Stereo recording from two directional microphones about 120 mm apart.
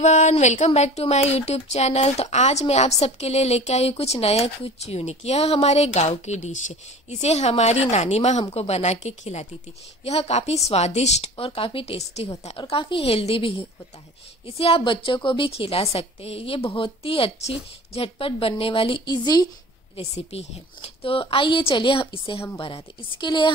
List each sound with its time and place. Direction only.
0.0 s a sound: 85° left
0.7 s a woman's voice: 65° left (ahead or behind)
10.0 s speech: 60° left (ahead or behind)
12.5 s a woman's voice: 50° left (ahead or behind)
19.0 s speech: 35° left (ahead or behind)
20.0 s a woman's voice: 60° left (ahead or behind); by 23.5 s 40° left (ahead or behind)